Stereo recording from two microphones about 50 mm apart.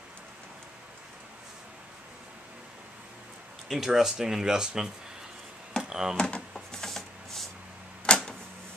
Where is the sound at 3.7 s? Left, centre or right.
Centre.